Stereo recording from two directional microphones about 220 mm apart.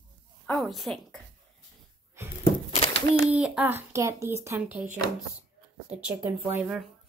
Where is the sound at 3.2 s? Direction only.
5° right (ahead or behind).